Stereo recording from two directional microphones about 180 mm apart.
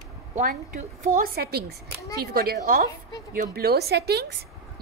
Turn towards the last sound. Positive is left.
turn(degrees=-65)  # may be behind; listen again after turning